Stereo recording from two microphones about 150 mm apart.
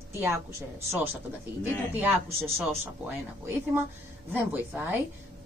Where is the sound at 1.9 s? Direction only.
15° right (ahead or behind).